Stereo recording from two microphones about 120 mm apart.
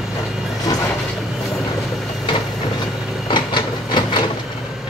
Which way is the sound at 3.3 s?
40° left (ahead or behind).